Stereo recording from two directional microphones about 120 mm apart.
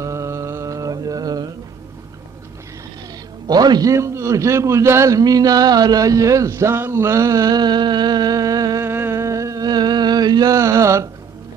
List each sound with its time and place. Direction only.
0.0 s mantra: 25° right (ahead or behind)
3.4 s a man's voice: 35° right (ahead or behind)
8.8 s a sound: 20° right (ahead or behind)